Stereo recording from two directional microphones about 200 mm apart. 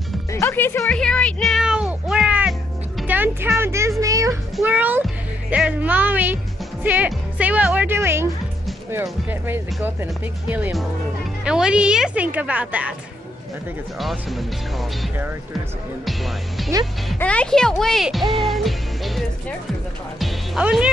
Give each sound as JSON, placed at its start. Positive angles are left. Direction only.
{"t": 0.3, "sound": "music", "side_deg": 10}
{"t": 3.0, "sound": "speech", "side_deg": -10}
{"t": 4.0, "sound": "music", "side_deg": -15}
{"t": 4.6, "sound": "speech", "side_deg": -10}
{"t": 13.9, "sound": "speech", "side_deg": 0}